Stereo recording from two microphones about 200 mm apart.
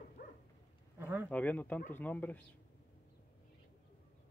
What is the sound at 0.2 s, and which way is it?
Dog, 45° left (ahead or behind).